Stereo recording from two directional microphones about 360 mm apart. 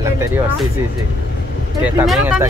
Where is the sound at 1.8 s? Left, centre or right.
Centre.